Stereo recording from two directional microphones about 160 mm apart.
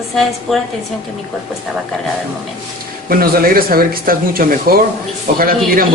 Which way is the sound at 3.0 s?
65° right (ahead or behind).